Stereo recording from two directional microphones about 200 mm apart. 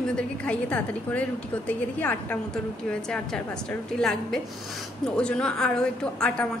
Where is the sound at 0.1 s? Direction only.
5° left (ahead or behind).